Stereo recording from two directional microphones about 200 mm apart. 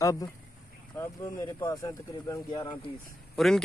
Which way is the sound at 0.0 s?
15° left (ahead or behind).